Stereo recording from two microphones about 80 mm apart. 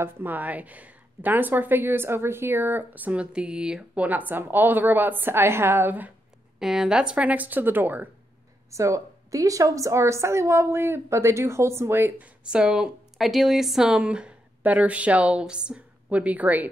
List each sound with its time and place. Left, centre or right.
0.0 s speech: right
6.6 s speech: centre; by 8.1 s right
8.6 s a woman's voice: right
12.2 s a woman's voice: centre